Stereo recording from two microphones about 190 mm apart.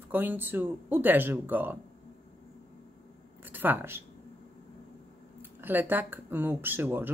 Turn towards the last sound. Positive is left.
turn(degrees=-10)  # may be behind; listen again after turning